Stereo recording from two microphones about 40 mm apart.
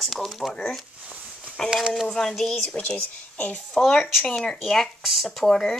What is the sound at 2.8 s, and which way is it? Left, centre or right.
Speech, left.